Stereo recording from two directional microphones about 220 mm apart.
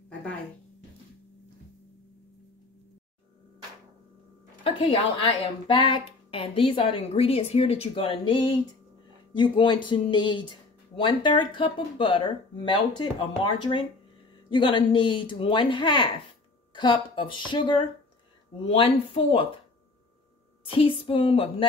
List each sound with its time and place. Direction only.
4.6 s speech: 25° left (ahead or behind)
20.6 s speech: 25° left (ahead or behind)